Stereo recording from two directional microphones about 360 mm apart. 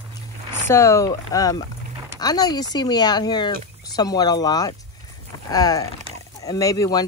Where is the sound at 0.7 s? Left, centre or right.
Centre.